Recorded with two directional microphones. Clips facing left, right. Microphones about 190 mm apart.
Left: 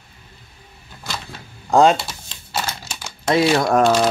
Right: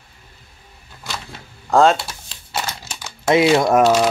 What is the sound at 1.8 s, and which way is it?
Speech, 5° right (ahead or behind).